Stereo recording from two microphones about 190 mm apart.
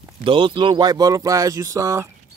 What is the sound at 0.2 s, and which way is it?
Speech, 25° right (ahead or behind).